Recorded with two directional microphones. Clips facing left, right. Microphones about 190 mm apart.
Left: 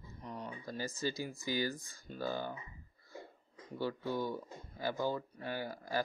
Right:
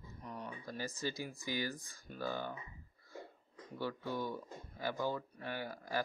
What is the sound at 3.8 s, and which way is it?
Speech, 30° left (ahead or behind).